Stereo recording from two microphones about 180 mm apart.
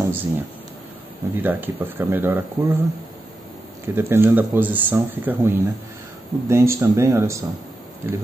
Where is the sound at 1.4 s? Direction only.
10° right (ahead or behind).